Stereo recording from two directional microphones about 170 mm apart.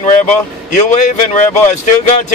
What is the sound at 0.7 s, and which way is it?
Speech, 45° left (ahead or behind).